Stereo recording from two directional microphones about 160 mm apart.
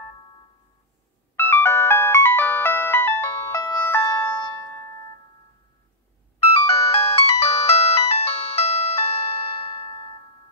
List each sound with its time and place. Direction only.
1.3 s ringtone: 15° left (ahead or behind)
3.7 s music: 15° left (ahead or behind)
6.9 s ringtone: 40° left (ahead or behind)